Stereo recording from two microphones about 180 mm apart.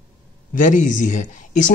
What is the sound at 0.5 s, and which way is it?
Speech, 45° left (ahead or behind).